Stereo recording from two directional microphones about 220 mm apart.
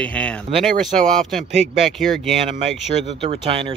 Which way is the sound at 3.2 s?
25° right (ahead or behind).